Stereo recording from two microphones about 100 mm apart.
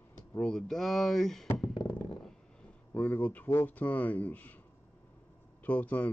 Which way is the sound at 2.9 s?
15° left (ahead or behind).